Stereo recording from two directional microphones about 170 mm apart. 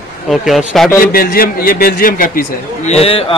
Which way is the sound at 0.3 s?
Centre (ahead or behind).